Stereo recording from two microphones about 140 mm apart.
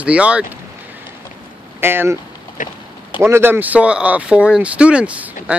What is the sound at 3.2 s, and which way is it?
Speech, 15° right (ahead or behind).